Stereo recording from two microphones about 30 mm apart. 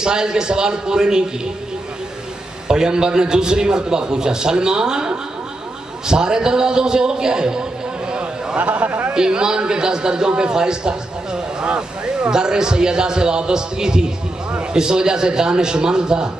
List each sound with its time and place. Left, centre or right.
0.0 s a man's voice: right
2.7 s a man's voice: right
8.5 s speech: right
9.1 s a man's voice: right
11.6 s a sound: right
12.3 s a man's voice: right